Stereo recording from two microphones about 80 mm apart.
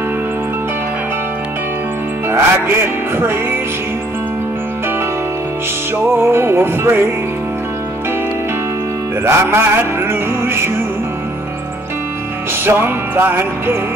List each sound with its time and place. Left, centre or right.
2.2 s music: right
6.1 s music: right
9.2 s music: right
12.6 s music: right